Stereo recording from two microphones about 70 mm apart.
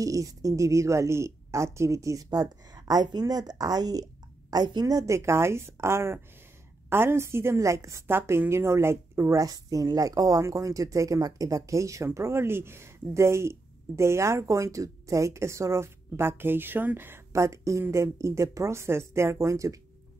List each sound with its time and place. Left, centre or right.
0.0 s speech: right
2.7 s speech: right
5.1 s a woman's voice: right
8.1 s speech: right
17.3 s speech: right